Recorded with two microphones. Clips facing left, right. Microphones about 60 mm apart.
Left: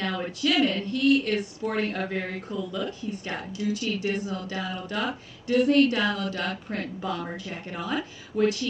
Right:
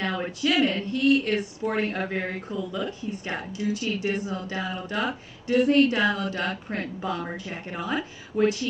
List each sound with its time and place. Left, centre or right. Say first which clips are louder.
0.0 s speech: right 1 dB; right